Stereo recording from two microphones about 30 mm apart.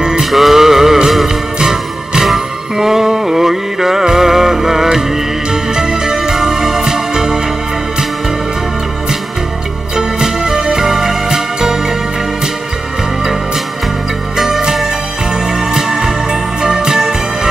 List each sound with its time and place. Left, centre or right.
0.2 s music: centre
6.8 s music: centre
9.9 s music: centre
14.3 s music: centre